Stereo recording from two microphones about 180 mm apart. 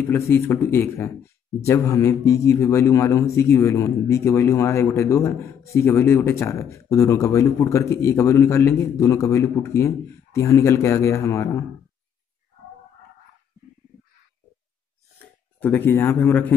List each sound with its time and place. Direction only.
0.3 s a man's voice: 15° left (ahead or behind)
15.6 s a man's voice: 10° left (ahead or behind)